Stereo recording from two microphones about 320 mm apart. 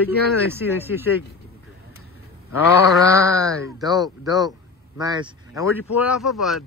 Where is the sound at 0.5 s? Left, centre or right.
Centre.